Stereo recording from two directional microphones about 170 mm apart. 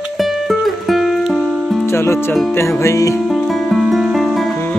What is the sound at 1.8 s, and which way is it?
Music, 15° left (ahead or behind).